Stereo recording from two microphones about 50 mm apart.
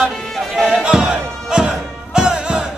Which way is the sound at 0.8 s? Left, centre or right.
Centre.